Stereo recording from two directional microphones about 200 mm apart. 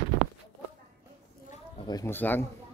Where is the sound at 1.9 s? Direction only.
15° left (ahead or behind).